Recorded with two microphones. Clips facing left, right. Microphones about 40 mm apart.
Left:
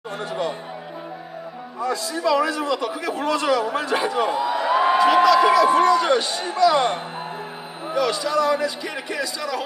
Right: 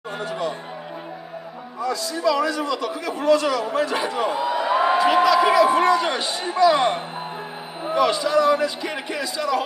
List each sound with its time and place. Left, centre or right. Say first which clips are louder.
0.2 s music: left 1 dB; centre
1.8 s music: even; left
2.2 s a man's voice: left 1 dB; centre
3.3 s a man's voice: left 1 dB; centre
4.4 s a sound: right 1 dB; centre
5.0 s a man's voice: left 3 dB; centre